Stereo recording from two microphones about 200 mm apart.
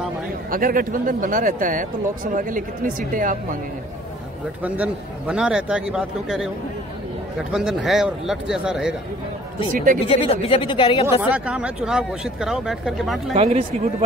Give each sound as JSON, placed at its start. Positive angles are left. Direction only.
{"t": 0.5, "sound": "speech", "side_deg": -45}
{"t": 4.7, "sound": "speech", "side_deg": -5}
{"t": 7.5, "sound": "speech", "side_deg": 0}
{"t": 10.0, "sound": "speech", "side_deg": 30}
{"t": 11.2, "sound": "speech", "side_deg": -5}
{"t": 13.4, "sound": "speech", "side_deg": -30}